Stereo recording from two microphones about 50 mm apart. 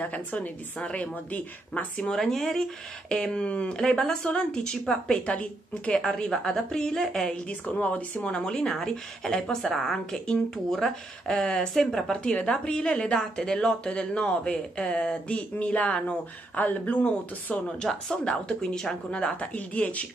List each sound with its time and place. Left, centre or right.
0.0 s speech: left
2.1 s speech: centre; by 5.9 s left
6.3 s speech: centre
7.4 s a woman's voice: left
16.5 s speech: left
17.6 s speech: centre